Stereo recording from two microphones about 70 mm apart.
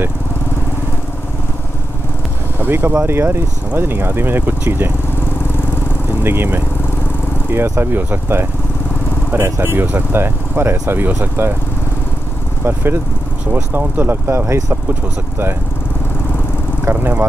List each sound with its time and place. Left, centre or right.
2.6 s speech: right
6.2 s speech: right
12.6 s speech: right
16.8 s speech: right